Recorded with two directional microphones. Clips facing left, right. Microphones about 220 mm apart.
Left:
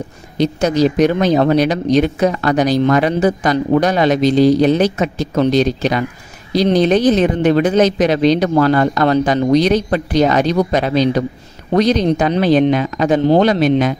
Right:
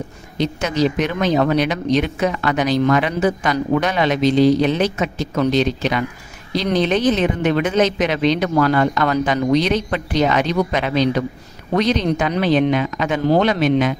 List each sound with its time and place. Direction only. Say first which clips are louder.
0.4 s speech: left 5 dB; 40° left (ahead or behind)